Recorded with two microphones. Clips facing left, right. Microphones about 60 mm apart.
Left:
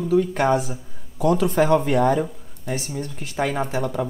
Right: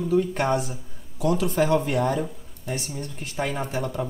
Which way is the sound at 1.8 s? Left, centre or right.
Left.